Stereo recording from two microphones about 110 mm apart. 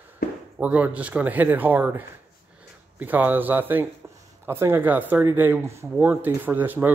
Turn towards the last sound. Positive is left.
turn(degrees=-15)  # may be behind; listen again after turning